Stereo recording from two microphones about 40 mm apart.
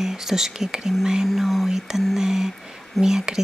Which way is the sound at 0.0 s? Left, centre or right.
Centre.